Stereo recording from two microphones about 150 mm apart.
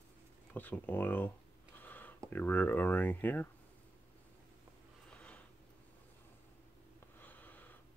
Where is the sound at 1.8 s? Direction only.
10° left (ahead or behind).